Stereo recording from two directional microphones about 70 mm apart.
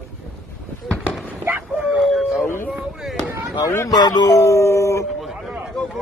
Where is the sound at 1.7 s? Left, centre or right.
Centre.